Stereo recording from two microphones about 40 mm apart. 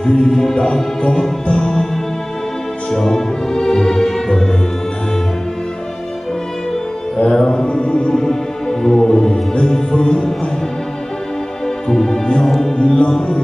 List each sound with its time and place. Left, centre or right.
0.0 s music: left
2.9 s music: centre
7.2 s mantra: centre
7.6 s music: left
8.2 s music: centre
11.9 s music: centre
12.8 s music: left